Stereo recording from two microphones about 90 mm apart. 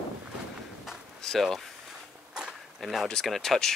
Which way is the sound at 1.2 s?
5° left (ahead or behind).